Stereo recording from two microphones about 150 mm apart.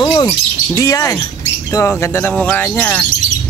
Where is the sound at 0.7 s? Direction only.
20° left (ahead or behind).